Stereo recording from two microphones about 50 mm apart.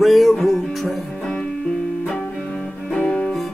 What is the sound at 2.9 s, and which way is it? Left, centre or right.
Music, centre.